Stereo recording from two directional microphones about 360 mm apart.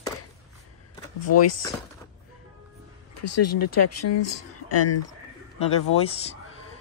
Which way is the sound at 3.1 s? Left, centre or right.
Left.